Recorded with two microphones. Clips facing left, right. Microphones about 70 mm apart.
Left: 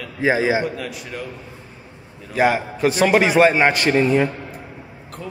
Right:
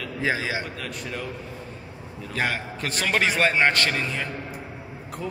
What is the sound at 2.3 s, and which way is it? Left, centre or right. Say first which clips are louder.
A man's voice: left 9 dB; centre.